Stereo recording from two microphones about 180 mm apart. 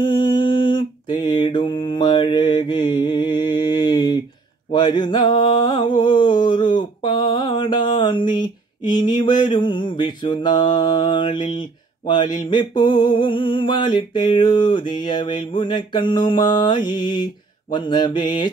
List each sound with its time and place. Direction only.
0.0 s mantra: 25° left (ahead or behind)
4.6 s a sound: 25° left (ahead or behind)
12.1 s mantra: 25° left (ahead or behind)